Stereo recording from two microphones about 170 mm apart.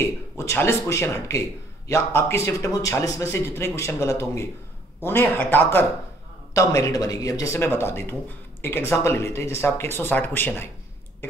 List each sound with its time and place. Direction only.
0.0 s speech: 15° left (ahead or behind)